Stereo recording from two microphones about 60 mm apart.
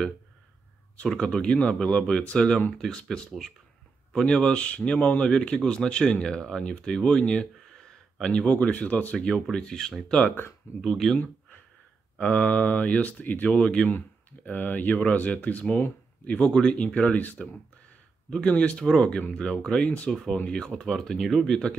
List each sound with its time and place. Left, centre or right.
1.0 s speech: centre
10.2 s speech: left
10.8 s speech: centre
12.2 s speech: centre